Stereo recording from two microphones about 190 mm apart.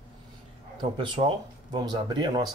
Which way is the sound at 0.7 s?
25° right (ahead or behind).